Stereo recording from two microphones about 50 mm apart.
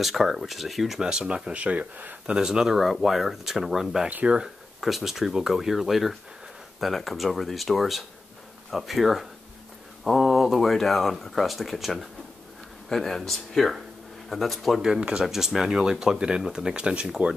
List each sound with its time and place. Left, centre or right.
0.0 s speech: centre; by 2.1 s right
2.2 s speech: centre
14.8 s speech: centre
15.2 s speech: centre